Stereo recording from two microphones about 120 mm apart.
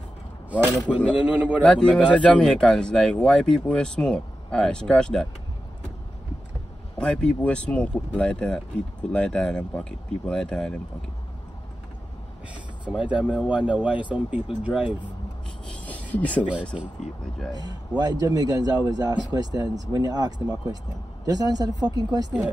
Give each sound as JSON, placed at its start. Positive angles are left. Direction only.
{"t": 0.9, "sound": "speech", "side_deg": 10}
{"t": 1.2, "sound": "speech", "side_deg": -10}
{"t": 1.6, "sound": "speech", "side_deg": 10}
{"t": 7.0, "sound": "speech", "side_deg": 10}
{"t": 12.9, "sound": "speech", "side_deg": -10}
{"t": 15.6, "sound": "rub", "side_deg": 10}
{"t": 16.7, "sound": "speech", "side_deg": -5}
{"t": 17.6, "sound": "a man's voice", "side_deg": -35}